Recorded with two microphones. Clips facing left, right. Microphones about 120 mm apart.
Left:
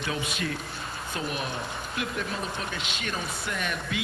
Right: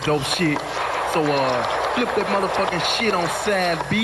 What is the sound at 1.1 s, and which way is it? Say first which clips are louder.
Speech: right 13 dB; 80° right.